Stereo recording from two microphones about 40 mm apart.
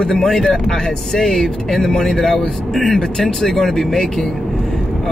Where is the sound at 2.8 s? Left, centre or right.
Centre.